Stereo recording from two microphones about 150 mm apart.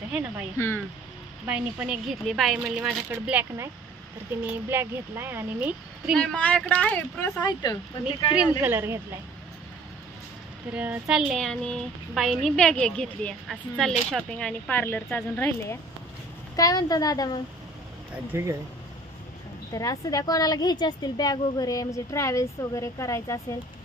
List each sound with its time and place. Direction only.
0.6 s a woman's voice: 15° left (ahead or behind)
1.5 s a child's voice: 5° right (ahead or behind)
6.1 s a woman's voice: 5° left (ahead or behind); by 7.7 s 25° left (ahead or behind)
8.4 s a child's voice: 10° right (ahead or behind)
10.7 s speech: 10° right (ahead or behind); by 15.8 s 10° left (ahead or behind)
16.5 s a woman's voice: 25° left (ahead or behind)
18.1 s a child's voice: 15° right (ahead or behind)
19.7 s a woman's voice: 25° left (ahead or behind)